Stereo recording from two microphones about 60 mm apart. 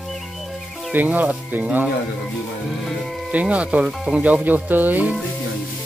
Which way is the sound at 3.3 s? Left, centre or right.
Right.